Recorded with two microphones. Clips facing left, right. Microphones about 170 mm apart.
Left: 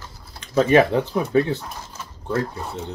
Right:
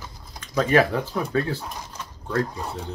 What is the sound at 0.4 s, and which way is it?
Speech, 20° left (ahead or behind).